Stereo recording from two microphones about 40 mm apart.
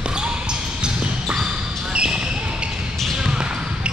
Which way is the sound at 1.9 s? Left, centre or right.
Right.